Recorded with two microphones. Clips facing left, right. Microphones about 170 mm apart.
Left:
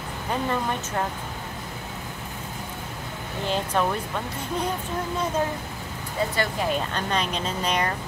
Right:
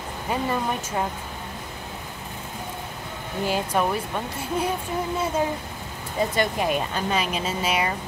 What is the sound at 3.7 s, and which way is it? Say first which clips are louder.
Speech: even; 10° right (ahead or behind).